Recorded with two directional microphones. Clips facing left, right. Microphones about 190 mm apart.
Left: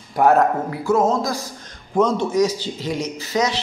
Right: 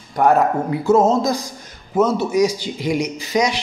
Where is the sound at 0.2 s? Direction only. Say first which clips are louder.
Even; centre (ahead or behind).